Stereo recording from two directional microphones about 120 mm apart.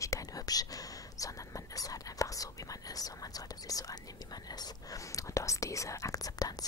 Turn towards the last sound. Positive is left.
turn(degrees=30)  # may be behind; listen again after turning